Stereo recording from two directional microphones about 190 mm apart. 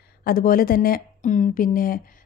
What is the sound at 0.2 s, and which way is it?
Speech, 50° left (ahead or behind).